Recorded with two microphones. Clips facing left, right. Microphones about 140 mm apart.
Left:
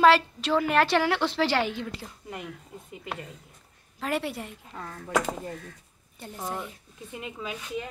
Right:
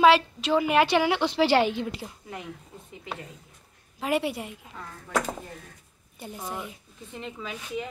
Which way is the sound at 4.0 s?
10° right (ahead or behind).